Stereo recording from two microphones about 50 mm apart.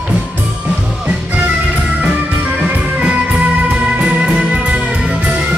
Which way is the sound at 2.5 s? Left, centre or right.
Right.